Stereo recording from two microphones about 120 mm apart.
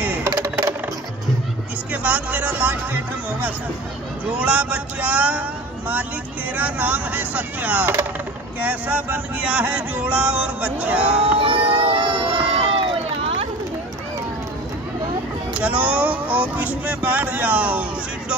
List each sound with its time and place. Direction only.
0.0 s coin: 15° right (ahead or behind)
1.9 s yodeling: 15° right (ahead or behind)
6.5 s yodeling: 15° right (ahead or behind)
11.3 s run: 45° right (ahead or behind)
15.6 s yodeling: 10° right (ahead or behind)